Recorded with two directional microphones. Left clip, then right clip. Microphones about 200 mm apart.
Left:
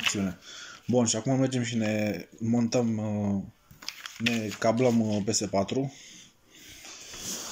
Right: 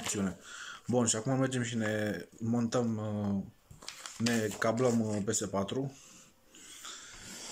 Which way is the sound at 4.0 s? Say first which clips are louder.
Left 4 dB; 20° right (ahead or behind).